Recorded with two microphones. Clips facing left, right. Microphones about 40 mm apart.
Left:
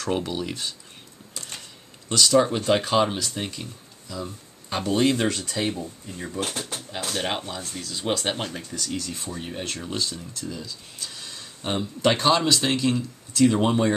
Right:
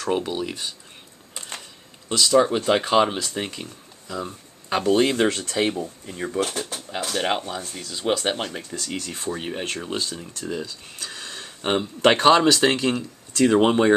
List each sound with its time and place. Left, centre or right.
0.0 s speech: centre
2.0 s speech: centre
2.5 s speech: centre
4.1 s speech: right
5.0 s speech: right
6.9 s speech: right
8.7 s speech: right
9.5 s speech: right
10.5 s speech: right